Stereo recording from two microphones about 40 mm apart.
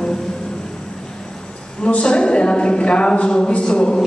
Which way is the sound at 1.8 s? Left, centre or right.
Left.